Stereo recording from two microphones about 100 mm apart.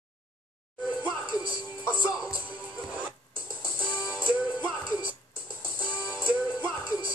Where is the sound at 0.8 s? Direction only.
55° right (ahead or behind).